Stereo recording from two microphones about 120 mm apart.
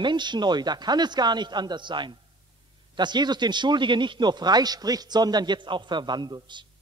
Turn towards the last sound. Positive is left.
turn(degrees=-40)  # may be behind; listen again after turning